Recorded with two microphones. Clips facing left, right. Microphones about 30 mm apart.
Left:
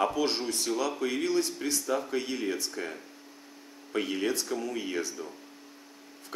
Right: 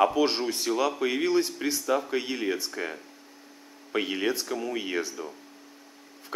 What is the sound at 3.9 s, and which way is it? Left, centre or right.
A man's voice, centre.